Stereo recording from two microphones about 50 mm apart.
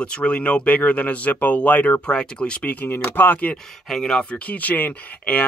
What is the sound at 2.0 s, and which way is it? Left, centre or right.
Speech, centre.